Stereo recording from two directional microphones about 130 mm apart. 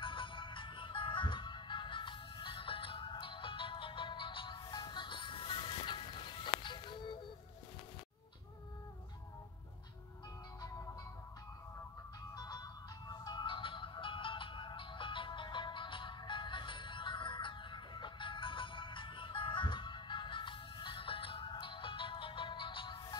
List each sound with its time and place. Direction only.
0.0 s music: 40° left (ahead or behind)
12.4 s music: 30° left (ahead or behind)